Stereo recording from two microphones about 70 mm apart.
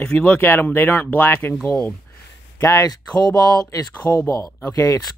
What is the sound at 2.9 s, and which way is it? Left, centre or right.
Speech, left.